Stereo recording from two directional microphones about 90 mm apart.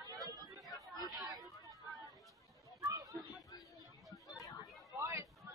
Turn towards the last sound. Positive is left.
turn(degrees=-30)  # may be behind; listen again after turning